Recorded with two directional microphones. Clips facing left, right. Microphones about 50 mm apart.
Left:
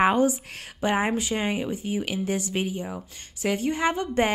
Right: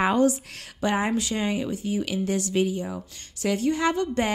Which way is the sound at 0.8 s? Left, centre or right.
Left.